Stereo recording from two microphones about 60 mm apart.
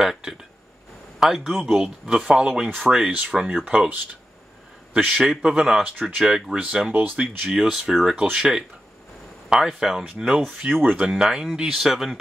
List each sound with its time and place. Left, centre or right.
0.0 s a man's voice: centre
6.9 s speech: right
7.4 s speech: centre